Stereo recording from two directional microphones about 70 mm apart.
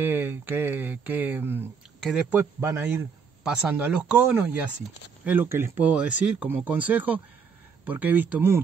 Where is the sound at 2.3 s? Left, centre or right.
Right.